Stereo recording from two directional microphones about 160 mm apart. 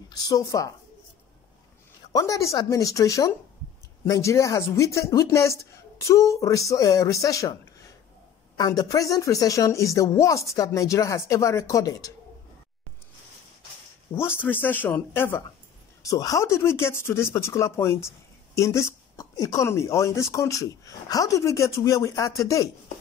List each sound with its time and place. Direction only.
0.1 s speech: 20° left (ahead or behind)
2.1 s speech: 20° left (ahead or behind)
8.5 s speech: 25° left (ahead or behind)
14.1 s speech: 15° left (ahead or behind)